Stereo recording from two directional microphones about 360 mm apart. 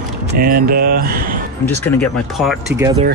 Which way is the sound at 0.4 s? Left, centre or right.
Right.